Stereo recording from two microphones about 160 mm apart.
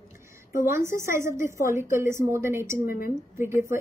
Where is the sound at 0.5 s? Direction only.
15° right (ahead or behind).